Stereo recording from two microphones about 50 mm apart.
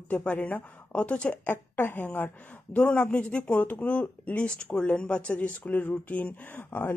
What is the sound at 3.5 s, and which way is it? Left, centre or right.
Speech, left.